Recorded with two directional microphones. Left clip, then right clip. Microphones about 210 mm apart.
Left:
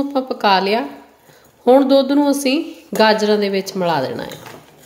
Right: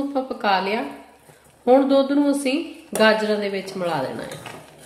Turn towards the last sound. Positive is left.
turn(degrees=45)  # may be behind; listen again after turning